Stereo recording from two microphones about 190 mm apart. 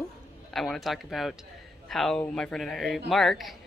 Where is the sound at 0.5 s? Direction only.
Centre (ahead or behind).